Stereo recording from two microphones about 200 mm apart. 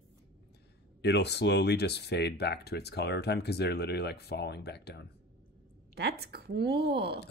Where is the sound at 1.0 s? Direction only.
55° left (ahead or behind).